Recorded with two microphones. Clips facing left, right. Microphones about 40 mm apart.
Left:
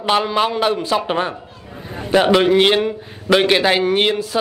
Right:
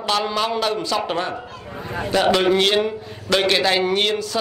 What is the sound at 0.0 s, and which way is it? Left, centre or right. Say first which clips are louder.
A man's voice: left 4 dB; left.